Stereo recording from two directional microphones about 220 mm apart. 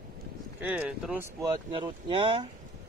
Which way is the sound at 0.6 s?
5° right (ahead or behind).